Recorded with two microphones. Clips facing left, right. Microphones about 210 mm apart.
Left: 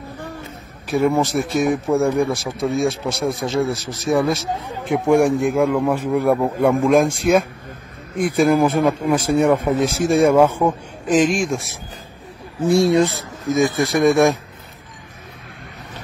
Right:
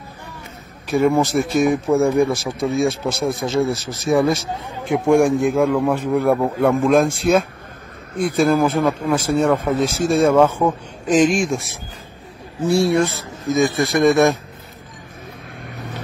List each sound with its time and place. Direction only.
0.9 s a man's voice: centre (ahead or behind)
10.6 s speech: centre (ahead or behind)
12.6 s a man's voice: 15° left (ahead or behind)
14.1 s speech: centre (ahead or behind)